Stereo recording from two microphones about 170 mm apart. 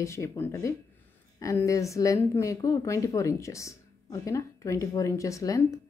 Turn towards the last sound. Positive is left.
turn(degrees=20)  # may be behind; listen again after turning